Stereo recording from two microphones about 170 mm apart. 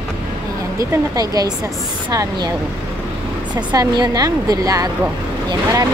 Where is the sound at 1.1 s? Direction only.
20° right (ahead or behind).